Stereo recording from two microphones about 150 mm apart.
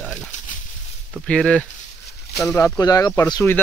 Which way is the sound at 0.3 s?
55° left (ahead or behind).